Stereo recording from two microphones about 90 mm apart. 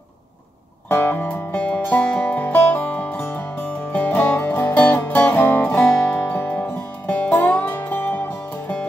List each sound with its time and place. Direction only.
0.8 s music: 25° left (ahead or behind)
5.7 s music: 10° left (ahead or behind)